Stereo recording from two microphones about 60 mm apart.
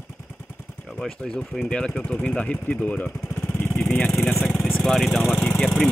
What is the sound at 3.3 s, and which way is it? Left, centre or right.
Vehicle, centre.